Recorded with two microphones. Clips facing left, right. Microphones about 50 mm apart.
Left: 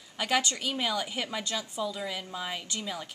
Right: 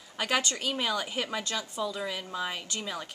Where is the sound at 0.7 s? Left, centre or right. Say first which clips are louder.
Even; centre.